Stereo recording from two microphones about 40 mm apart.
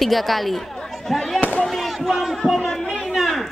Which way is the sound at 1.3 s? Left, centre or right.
Left.